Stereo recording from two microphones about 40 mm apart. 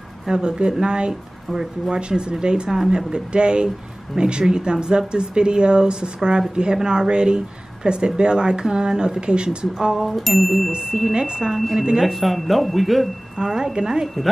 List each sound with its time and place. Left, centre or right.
0.3 s speech: right
10.1 s speech: centre
10.7 s speech: right
12.0 s speech: centre
13.4 s a woman's voice: centre
14.0 s speech: centre